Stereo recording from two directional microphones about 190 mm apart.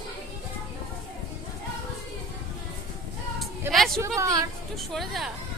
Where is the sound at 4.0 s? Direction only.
15° right (ahead or behind).